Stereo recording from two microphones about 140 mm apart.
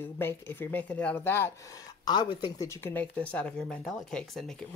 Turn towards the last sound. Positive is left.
turn(degrees=5)  # may be behind; listen again after turning